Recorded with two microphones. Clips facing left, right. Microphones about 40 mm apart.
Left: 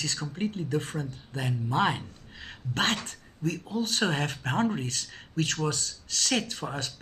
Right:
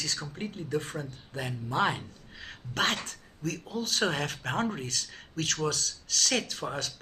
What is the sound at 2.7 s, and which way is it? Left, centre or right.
Speech, left.